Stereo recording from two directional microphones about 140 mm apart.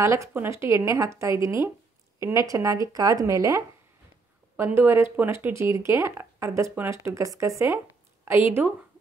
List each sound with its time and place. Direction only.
0.0 s a woman's voice: 20° right (ahead or behind)